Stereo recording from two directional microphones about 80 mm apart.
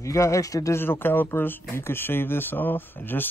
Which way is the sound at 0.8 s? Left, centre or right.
Left.